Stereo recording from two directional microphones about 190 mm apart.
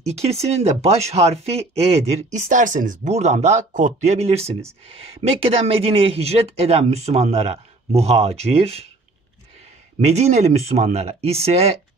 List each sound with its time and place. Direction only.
0.0 s speech: 35° right (ahead or behind)
9.9 s speech: 35° right (ahead or behind)